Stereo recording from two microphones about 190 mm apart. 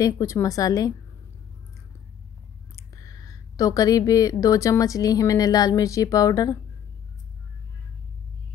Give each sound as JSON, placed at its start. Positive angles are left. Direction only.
{"t": 0.0, "sound": "a woman's voice", "side_deg": 15}
{"t": 2.7, "sound": "a woman's voice", "side_deg": 20}